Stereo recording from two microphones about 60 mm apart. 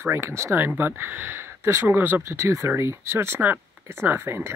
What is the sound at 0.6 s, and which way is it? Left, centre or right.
Speech, right.